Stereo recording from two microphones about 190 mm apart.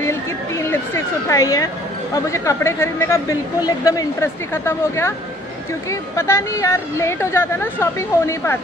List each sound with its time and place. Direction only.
0.7 s a woman's voice: 15° left (ahead or behind)